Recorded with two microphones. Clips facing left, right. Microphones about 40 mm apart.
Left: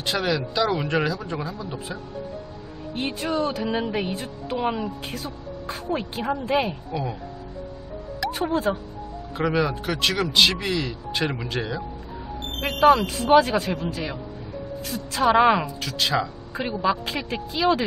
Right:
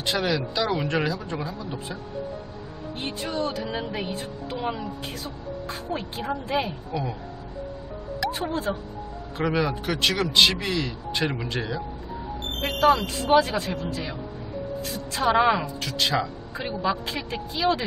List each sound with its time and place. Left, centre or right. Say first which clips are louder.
0.0 s speech: left 1 dB; centre
3.0 s speech: left 4 dB; centre
3.7 s a woman's voice: left 4 dB; centre
5.1 s speech: left 1 dB; centre
8.2 s music: left 3 dB; centre
9.4 s speech: left 2 dB; centre
13.0 s speech: left 3 dB; centre
15.3 s speech: left 3 dB; centre
15.8 s speech: left 1 dB; centre